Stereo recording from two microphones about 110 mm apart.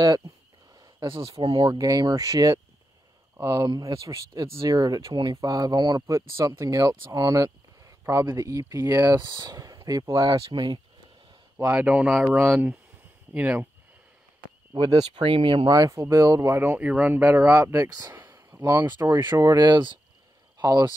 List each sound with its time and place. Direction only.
1.0 s speech: 50° right (ahead or behind)
11.8 s speech: 10° right (ahead or behind)
14.8 s speech: 40° right (ahead or behind)
15.2 s speech: 50° right (ahead or behind)
15.9 s speech: 25° right (ahead or behind)
17.5 s speech: 25° right (ahead or behind)
18.2 s a sound: 30° right (ahead or behind)
18.6 s speech: 25° right (ahead or behind)
19.4 s speech: 40° right (ahead or behind)